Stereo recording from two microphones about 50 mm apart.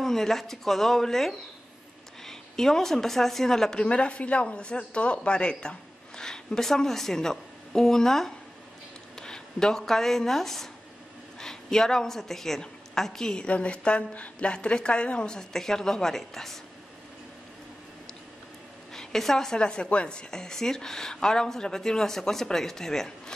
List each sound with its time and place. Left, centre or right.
0.0 s a woman's voice: centre
3.8 s a woman's voice: left; by 16.5 s centre
18.9 s speech: centre